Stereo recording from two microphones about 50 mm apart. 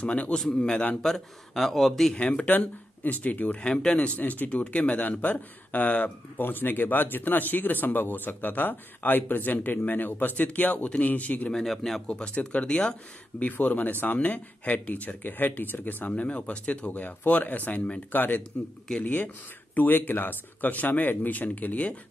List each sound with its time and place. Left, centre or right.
0.0 s speech: left
1.0 s speech: centre
2.1 s speech: left
2.4 s speech: left
3.7 s speech: centre
6.3 s speech: left
11.5 s speech: centre
12.1 s speech: left
13.4 s speech: left
16.1 s speech: left